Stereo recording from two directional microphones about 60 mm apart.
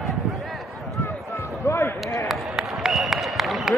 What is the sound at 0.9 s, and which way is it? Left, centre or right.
Basketball bounce, left.